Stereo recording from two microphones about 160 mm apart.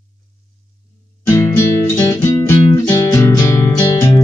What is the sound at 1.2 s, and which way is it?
Music, 20° left (ahead or behind).